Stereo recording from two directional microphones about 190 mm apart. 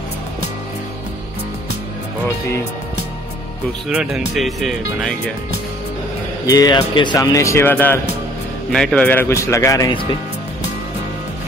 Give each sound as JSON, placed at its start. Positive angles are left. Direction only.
{"t": 3.9, "sound": "speech", "side_deg": -5}
{"t": 6.4, "sound": "speech", "side_deg": 20}